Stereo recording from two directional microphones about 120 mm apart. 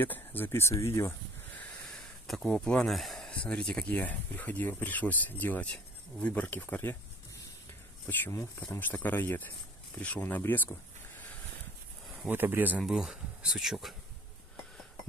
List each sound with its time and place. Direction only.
0.0 s speech: 15° left (ahead or behind)
1.6 s speech: 5° left (ahead or behind)
8.1 s speech: 20° left (ahead or behind)
12.3 s speech: 15° right (ahead or behind)
12.8 s speech: 5° right (ahead or behind)